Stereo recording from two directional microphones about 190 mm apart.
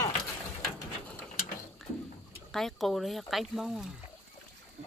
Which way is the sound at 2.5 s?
Centre (ahead or behind).